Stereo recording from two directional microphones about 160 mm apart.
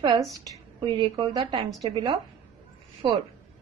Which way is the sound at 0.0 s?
30° right (ahead or behind).